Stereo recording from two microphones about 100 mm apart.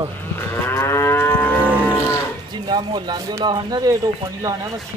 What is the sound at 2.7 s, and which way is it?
Speech, 45° right (ahead or behind).